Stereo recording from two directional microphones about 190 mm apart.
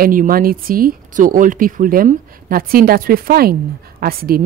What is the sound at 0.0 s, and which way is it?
Speech, 45° right (ahead or behind).